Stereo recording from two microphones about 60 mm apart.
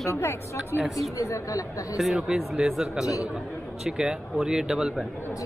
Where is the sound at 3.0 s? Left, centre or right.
Left.